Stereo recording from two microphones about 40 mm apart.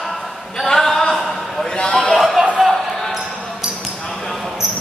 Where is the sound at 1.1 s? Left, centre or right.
Centre.